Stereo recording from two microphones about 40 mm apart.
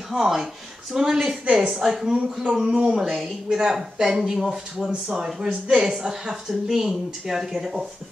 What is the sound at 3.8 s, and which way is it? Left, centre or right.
A man's voice, centre.